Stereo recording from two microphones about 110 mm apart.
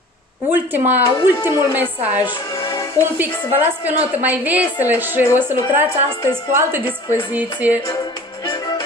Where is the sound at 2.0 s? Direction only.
15° right (ahead or behind).